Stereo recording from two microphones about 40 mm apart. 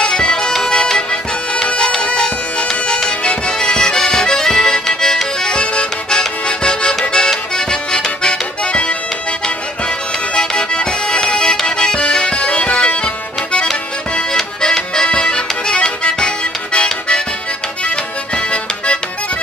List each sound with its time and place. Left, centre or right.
0.0 s music: centre
1.6 s bagpipes: centre
3.1 s accordion: left
10.3 s music: left
14.3 s music: centre
15.0 s accordion: left
16.7 s music: left
17.8 s accordion: left